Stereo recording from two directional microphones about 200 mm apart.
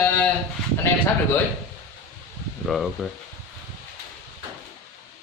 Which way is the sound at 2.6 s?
Centre (ahead or behind).